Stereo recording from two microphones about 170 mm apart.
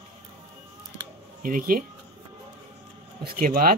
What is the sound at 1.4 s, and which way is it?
Speech, 55° right (ahead or behind).